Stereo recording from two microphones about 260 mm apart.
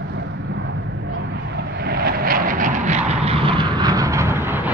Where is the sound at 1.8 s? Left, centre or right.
Right.